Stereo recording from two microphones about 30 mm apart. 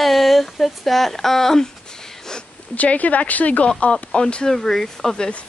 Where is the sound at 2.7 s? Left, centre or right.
Left.